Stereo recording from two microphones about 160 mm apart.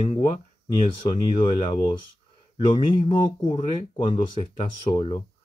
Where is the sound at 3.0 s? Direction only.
35° left (ahead or behind).